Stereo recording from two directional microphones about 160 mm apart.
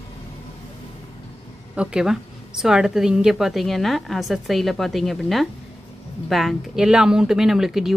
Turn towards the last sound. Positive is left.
turn(degrees=0)  # may be behind; listen again after turning